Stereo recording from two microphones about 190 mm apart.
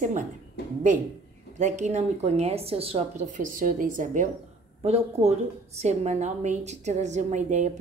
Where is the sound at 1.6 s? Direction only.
40° right (ahead or behind).